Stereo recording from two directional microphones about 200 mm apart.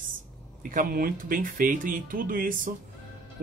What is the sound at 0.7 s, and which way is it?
Speech, 45° right (ahead or behind).